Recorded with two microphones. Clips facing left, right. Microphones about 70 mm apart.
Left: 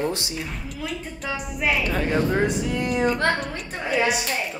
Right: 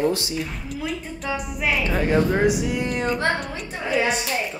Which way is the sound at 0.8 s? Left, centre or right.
Centre.